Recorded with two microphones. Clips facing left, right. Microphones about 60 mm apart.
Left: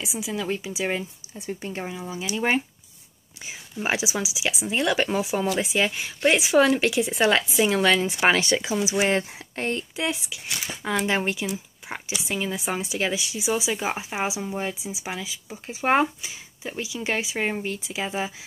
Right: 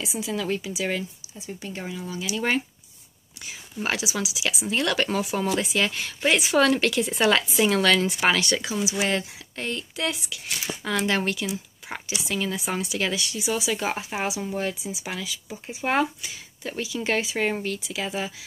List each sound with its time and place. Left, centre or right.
0.0 s speech: centre
0.6 s speech: centre
1.6 s speech: left
2.0 s speech: centre
8.2 s speech: left
9.9 s speech: centre
17.7 s speech: left